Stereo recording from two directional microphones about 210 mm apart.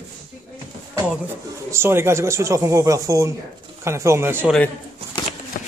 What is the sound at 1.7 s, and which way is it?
Speech, 10° right (ahead or behind).